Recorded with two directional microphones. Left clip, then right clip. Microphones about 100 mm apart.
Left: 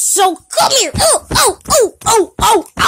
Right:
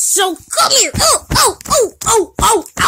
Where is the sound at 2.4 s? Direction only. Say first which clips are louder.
Left 1 dB; 30° left (ahead or behind).